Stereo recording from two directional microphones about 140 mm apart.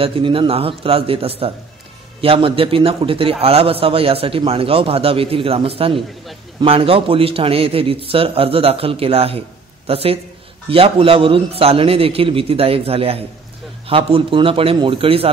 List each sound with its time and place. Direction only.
0.0 s a man's voice: 40° right (ahead or behind)